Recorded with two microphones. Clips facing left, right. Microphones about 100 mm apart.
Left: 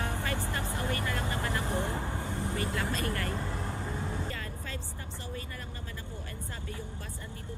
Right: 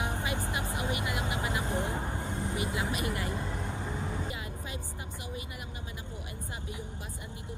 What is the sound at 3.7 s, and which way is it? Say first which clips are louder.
Vehicle: even; 15° right (ahead or behind).